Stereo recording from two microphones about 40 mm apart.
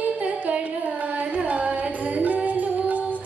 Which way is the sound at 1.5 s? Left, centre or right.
Right.